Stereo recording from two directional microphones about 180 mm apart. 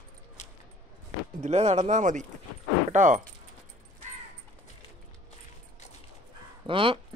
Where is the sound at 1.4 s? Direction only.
40° right (ahead or behind).